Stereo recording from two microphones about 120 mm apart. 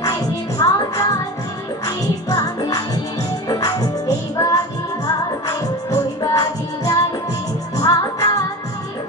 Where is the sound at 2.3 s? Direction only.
30° left (ahead or behind).